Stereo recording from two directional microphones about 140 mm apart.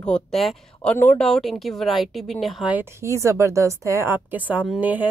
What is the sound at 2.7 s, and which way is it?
A woman's voice, 15° right (ahead or behind).